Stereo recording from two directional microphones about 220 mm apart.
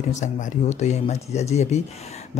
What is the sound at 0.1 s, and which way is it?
Speech, 30° left (ahead or behind).